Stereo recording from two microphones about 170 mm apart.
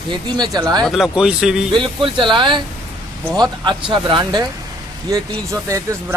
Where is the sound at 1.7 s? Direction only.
30° right (ahead or behind).